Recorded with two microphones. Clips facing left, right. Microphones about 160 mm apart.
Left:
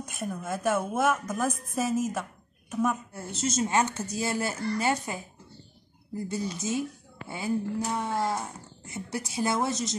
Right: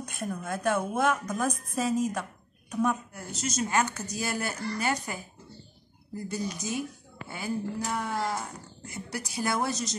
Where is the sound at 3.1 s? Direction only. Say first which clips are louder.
Left 3 dB; 25° left (ahead or behind).